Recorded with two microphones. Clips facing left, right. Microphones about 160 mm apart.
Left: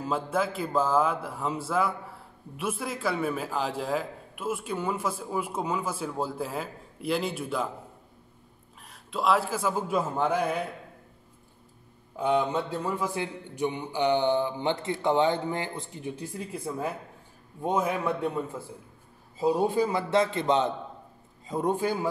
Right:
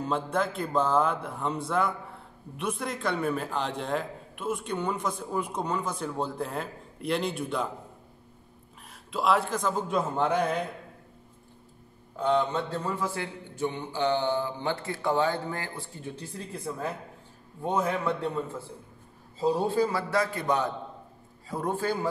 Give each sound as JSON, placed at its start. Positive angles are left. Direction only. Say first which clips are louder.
{"t": 0.0, "sound": "a man's voice", "louder": "even", "side_deg": 5}
{"t": 8.8, "sound": "a man's voice", "louder": "even", "side_deg": 0}
{"t": 12.2, "sound": "a man's voice", "louder": "even", "side_deg": 10}